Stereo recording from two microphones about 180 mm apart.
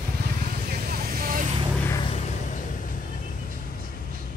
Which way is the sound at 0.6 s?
60° right (ahead or behind).